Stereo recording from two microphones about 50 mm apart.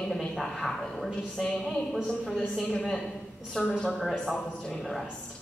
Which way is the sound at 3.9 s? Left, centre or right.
Centre.